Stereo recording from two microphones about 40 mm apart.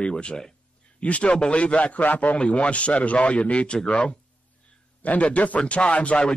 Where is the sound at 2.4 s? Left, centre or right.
Left.